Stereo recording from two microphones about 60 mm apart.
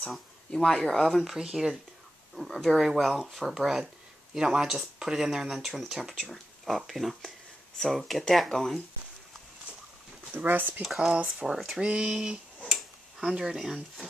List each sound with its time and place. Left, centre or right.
0.5 s speech: centre
1.1 s speech: centre
10.3 s speech: right
10.8 s speech: centre
11.5 s speech: centre
11.8 s speech: centre
12.6 s finger snapping: centre
13.3 s speech: centre